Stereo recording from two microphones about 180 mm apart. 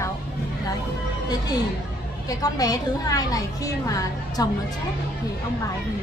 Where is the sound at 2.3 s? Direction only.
20° left (ahead or behind).